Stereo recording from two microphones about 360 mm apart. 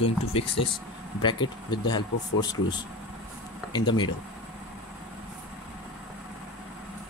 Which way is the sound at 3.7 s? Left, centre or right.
Centre.